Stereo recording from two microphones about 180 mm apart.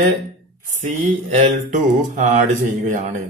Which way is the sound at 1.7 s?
45° right (ahead or behind).